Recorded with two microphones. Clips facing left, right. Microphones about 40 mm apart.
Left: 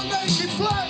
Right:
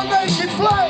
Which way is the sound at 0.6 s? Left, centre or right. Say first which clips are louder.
Right 10 dB; right.